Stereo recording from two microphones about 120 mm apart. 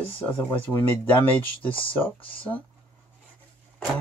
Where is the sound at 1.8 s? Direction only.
45° left (ahead or behind).